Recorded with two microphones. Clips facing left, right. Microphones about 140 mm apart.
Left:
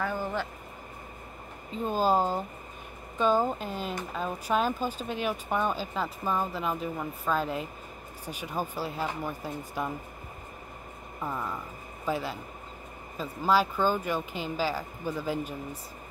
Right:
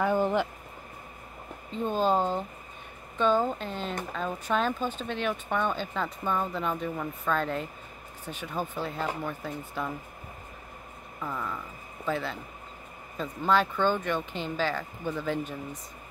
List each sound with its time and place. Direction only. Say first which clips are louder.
0.0 s speech: right 6 dB; 20° right (ahead or behind)
1.7 s speech: even; 5° left (ahead or behind)
11.1 s speech: left 1 dB; 20° left (ahead or behind)